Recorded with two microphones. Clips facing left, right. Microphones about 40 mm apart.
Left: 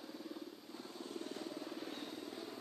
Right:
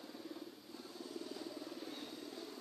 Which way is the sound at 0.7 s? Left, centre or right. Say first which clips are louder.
Left 2 dB; left.